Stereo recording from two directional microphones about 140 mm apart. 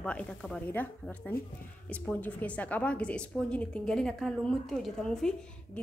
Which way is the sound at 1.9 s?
10° left (ahead or behind).